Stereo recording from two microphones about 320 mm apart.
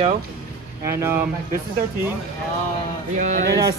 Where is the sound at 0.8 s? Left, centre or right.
Centre.